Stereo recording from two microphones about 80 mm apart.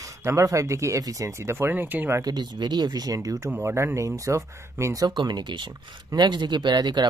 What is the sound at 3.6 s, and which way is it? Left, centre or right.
Speech, right.